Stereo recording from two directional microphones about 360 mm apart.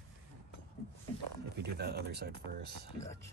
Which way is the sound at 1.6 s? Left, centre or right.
Right.